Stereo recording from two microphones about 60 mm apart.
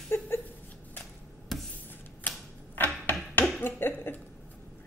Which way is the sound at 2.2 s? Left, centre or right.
Left.